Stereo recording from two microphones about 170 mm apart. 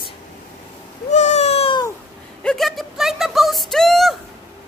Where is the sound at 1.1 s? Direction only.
45° left (ahead or behind).